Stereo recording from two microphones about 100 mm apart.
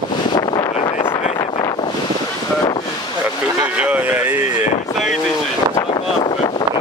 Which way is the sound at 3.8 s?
15° right (ahead or behind).